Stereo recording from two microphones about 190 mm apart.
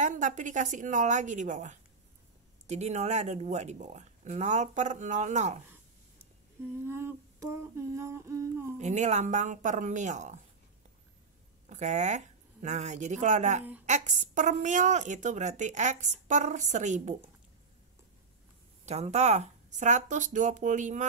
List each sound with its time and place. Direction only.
0.0 s a woman's voice: 40° right (ahead or behind)
6.9 s humming: 10° right (ahead or behind)
8.7 s a woman's voice: 40° right (ahead or behind)
11.7 s a woman's voice: 40° right (ahead or behind)
18.9 s a woman's voice: 35° right (ahead or behind)